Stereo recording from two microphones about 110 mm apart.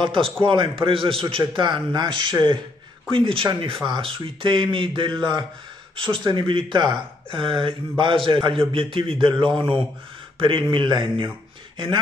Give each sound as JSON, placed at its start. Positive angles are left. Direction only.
{"t": 0.0, "sound": "a man's voice", "side_deg": -50}
{"t": 3.1, "sound": "a man's voice", "side_deg": -50}